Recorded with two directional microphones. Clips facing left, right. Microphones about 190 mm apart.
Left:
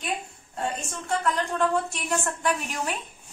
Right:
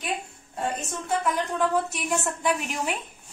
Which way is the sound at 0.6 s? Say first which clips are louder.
Right 1 dB; 5° right (ahead or behind).